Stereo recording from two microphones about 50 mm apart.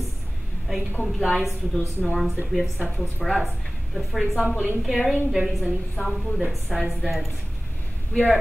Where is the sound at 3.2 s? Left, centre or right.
Centre.